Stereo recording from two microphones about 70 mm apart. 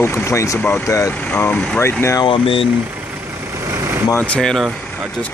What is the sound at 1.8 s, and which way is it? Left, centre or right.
Speech, left.